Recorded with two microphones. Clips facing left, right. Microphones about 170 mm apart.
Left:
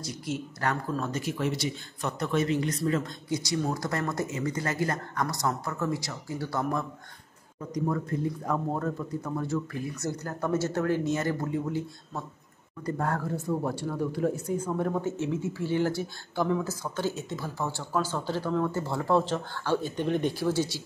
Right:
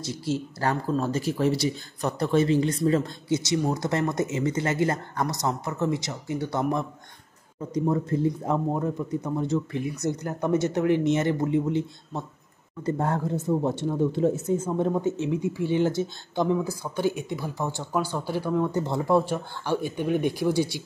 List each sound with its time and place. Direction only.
0.0 s speech: 30° right (ahead or behind); by 20.8 s 15° right (ahead or behind)